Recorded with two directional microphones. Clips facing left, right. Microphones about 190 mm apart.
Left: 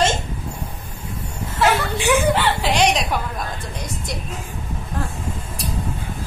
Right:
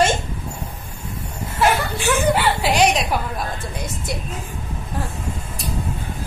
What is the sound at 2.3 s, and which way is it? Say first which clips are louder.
Chuckle: right 1 dB; 10° right (ahead or behind).